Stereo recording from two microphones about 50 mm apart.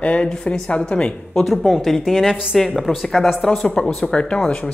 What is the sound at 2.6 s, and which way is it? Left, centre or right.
Speech, centre.